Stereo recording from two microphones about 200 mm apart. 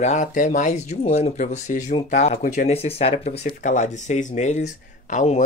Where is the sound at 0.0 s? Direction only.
40° left (ahead or behind).